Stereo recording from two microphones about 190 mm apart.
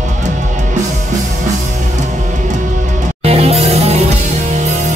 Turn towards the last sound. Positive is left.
turn(degrees=-35)  # may be behind; listen again after turning